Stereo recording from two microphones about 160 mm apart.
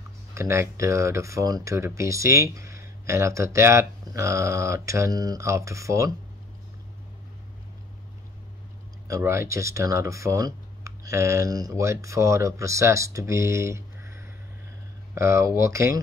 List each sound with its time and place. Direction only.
0.3 s speech: 15° right (ahead or behind)
9.0 s speech: 20° right (ahead or behind)